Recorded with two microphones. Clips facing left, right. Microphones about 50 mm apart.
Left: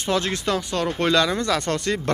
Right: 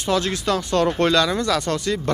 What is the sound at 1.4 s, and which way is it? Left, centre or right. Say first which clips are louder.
Speech: right 1 dB; left.